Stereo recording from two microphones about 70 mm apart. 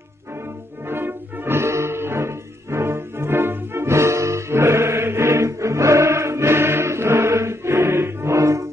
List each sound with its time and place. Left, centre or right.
0.8 s music: right